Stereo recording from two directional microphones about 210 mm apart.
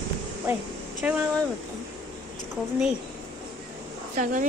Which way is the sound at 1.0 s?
5° right (ahead or behind).